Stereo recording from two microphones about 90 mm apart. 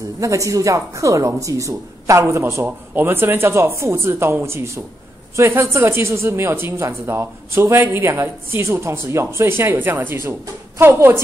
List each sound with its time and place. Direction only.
0.2 s a woman's voice: 35° right (ahead or behind)